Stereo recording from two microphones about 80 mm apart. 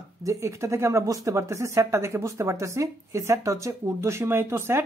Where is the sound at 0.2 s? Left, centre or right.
Right.